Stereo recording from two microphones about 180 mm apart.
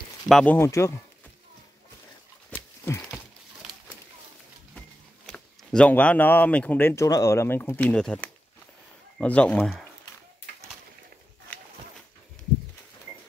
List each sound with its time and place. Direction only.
0.3 s speech: 5° left (ahead or behind)
0.6 s speech: 15° left (ahead or behind)
2.5 s a sound: 10° left (ahead or behind)
4.7 s speech: 5° left (ahead or behind)